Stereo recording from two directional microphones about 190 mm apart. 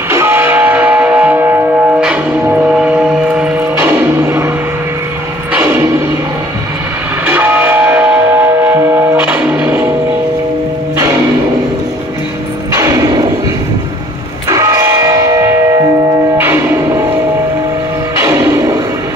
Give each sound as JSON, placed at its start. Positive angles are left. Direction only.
{"t": 0.1, "sound": "music", "side_deg": -10}
{"t": 5.5, "sound": "music", "side_deg": -10}
{"t": 7.2, "sound": "music", "side_deg": -10}
{"t": 14.5, "sound": "music", "side_deg": -15}
{"t": 18.2, "sound": "music", "side_deg": -15}